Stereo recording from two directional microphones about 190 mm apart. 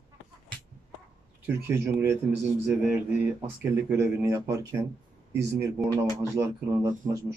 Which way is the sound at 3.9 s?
15° right (ahead or behind).